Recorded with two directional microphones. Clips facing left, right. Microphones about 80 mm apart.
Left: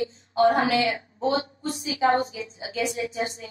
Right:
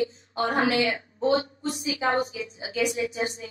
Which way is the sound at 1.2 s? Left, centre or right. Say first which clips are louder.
Right 2 dB; right.